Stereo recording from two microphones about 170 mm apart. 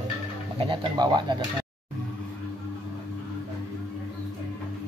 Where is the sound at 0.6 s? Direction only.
30° right (ahead or behind).